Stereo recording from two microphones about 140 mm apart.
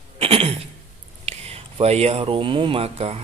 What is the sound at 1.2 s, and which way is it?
Speech, 45° right (ahead or behind).